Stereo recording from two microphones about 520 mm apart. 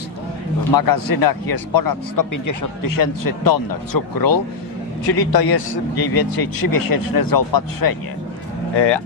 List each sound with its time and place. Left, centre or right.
0.7 s speech: left